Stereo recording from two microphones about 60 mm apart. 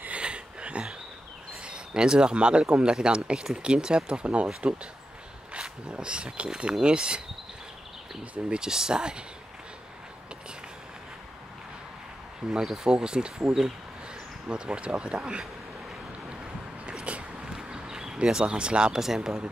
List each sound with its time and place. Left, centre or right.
0.0 s a sound: centre
2.7 s speech: centre
8.2 s speech: centre
12.4 s speech: centre
14.5 s speech: centre
16.9 s a sound: centre
17.5 s speech: centre